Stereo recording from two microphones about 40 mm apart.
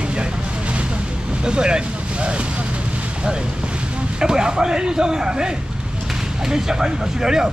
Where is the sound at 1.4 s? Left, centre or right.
Right.